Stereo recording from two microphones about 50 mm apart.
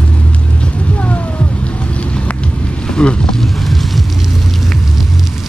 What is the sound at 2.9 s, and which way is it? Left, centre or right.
Vehicle, centre.